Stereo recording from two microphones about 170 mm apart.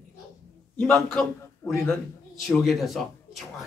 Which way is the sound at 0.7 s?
5° left (ahead or behind).